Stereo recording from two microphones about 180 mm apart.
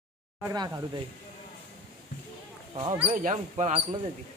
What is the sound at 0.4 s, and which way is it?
Speech, 15° right (ahead or behind).